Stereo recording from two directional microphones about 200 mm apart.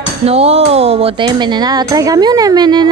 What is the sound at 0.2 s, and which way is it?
Speech, 30° right (ahead or behind).